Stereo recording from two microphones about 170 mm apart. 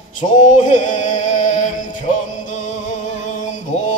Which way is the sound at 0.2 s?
50° left (ahead or behind).